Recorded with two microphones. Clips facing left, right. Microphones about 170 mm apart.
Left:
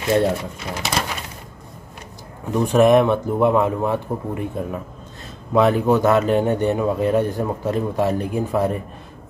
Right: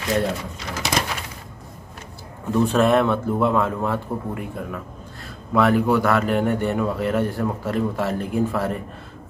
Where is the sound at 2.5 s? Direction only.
15° left (ahead or behind).